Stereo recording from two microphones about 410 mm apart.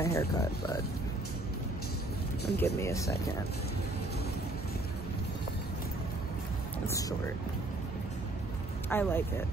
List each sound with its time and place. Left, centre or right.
0.0 s speech: centre
2.5 s speech: centre
6.9 s speech: centre
8.8 s speech: centre